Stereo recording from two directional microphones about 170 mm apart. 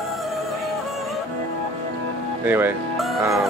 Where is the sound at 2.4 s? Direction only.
10° right (ahead or behind).